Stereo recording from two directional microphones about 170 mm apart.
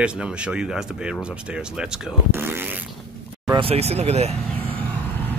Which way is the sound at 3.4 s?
30° right (ahead or behind).